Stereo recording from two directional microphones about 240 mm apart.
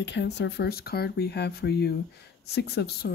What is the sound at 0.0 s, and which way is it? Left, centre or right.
Speech, left.